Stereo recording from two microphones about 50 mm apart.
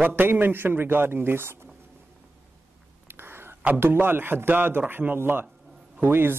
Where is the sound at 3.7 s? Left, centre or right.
Right.